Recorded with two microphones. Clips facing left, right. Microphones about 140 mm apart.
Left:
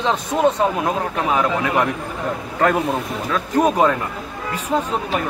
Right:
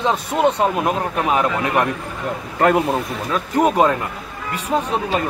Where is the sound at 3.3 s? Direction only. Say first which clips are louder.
Even; 15° right (ahead or behind).